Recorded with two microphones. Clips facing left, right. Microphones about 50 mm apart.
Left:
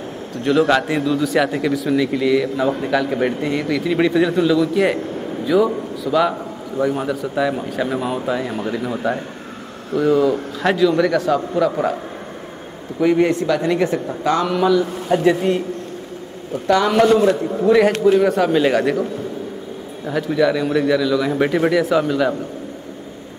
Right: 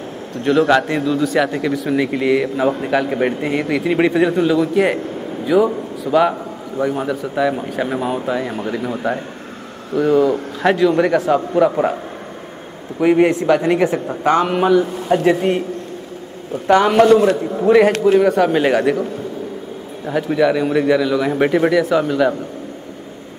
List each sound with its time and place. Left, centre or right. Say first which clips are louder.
0.4 s speech: right 2 dB; centre
1.9 s a man's voice: right 1 dB; right
3.6 s a man's voice: right 2 dB; right
4.9 s a sound: even; centre
6.0 s a man's voice: right 3 dB; right
6.8 s a man's voice: even; centre
10.9 s a man's voice: right 2 dB; right
13.0 s a man's voice: right 2 dB; right
16.6 s a man's voice: right 3 dB; right
18.2 s a man's voice: right 1 dB; centre
20.1 s a man's voice: right 2 dB; centre